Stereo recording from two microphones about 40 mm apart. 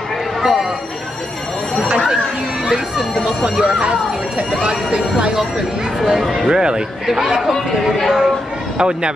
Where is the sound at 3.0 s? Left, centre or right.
Centre.